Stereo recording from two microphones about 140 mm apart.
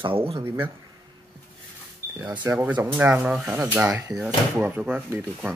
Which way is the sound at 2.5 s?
20° right (ahead or behind).